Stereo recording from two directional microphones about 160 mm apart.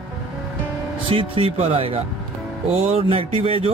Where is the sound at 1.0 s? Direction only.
35° right (ahead or behind).